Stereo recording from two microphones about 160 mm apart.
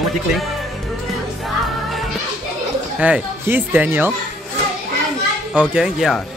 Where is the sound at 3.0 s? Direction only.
10° right (ahead or behind).